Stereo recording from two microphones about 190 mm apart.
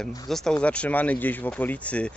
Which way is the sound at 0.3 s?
5° left (ahead or behind).